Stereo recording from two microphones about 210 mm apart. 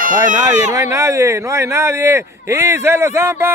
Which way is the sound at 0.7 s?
15° right (ahead or behind).